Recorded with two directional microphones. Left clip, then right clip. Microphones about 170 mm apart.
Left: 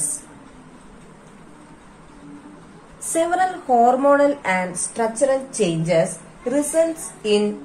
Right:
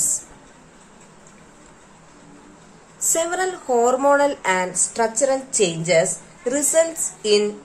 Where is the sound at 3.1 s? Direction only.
35° right (ahead or behind).